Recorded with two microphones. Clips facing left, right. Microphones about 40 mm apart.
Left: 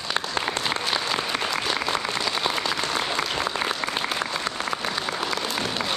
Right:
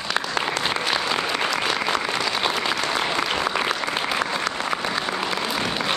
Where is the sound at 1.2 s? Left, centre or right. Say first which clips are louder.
Right 3 dB; right.